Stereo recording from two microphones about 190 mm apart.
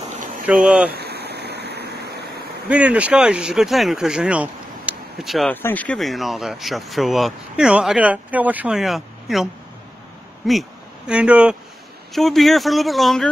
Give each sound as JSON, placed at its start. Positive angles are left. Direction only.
{"t": 0.5, "sound": "speech", "side_deg": -5}
{"t": 0.8, "sound": "a sound", "side_deg": -60}
{"t": 2.7, "sound": "speech", "side_deg": -5}
{"t": 5.5, "sound": "speech", "side_deg": 10}